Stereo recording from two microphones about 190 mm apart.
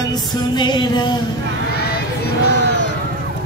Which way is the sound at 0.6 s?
25° left (ahead or behind).